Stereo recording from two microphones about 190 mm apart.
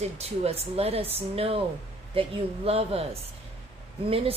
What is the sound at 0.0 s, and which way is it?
A woman's voice, 35° right (ahead or behind).